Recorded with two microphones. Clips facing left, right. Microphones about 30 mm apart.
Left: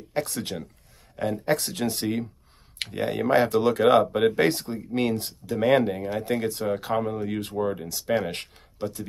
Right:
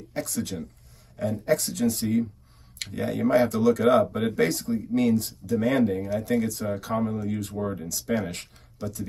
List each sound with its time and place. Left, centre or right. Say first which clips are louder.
0.1 s speech: left 2 dB; left
2.8 s speech: even; left
7.5 s speech: left 3 dB; left